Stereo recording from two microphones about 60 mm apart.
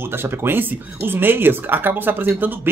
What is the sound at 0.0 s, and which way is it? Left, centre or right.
Speech, right.